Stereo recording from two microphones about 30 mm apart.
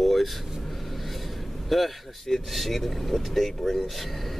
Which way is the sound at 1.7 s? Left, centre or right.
Centre.